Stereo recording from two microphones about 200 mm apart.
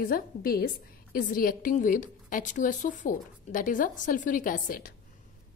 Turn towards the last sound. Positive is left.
turn(degrees=45)  # may be behind; listen again after turning